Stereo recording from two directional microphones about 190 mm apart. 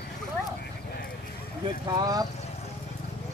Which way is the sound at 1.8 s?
20° right (ahead or behind).